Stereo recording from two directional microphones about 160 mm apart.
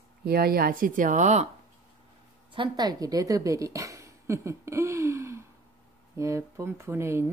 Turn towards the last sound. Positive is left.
turn(degrees=-15)  # may be behind; listen again after turning